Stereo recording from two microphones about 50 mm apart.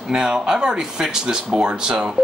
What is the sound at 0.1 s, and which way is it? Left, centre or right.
Speech, centre.